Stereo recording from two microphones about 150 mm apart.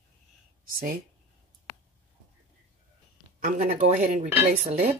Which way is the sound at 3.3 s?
55° right (ahead or behind).